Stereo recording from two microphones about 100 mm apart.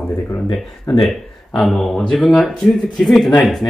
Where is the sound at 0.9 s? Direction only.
55° left (ahead or behind).